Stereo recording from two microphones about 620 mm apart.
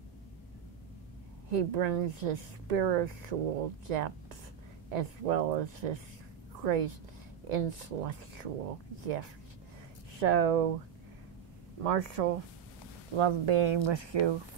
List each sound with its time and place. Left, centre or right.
1.5 s speech: right
11.8 s speech: right
13.1 s speech: right